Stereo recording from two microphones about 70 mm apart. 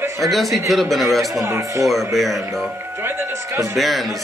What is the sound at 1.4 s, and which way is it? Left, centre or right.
Speech, right.